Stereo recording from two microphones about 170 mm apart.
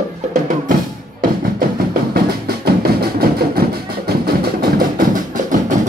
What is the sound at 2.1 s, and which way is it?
Music, 65° right (ahead or behind).